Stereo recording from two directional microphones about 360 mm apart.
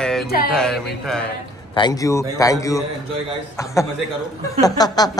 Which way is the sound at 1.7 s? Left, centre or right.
Centre.